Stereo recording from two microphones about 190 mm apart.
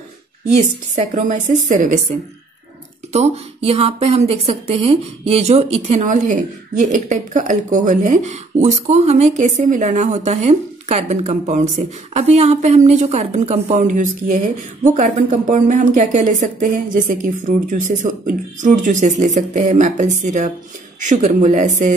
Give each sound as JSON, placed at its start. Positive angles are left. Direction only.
{"t": 0.9, "sound": "speech", "side_deg": -40}
{"t": 3.1, "sound": "speech", "side_deg": -35}